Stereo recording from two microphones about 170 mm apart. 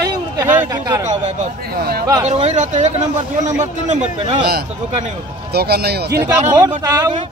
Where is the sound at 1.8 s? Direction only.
70° right (ahead or behind).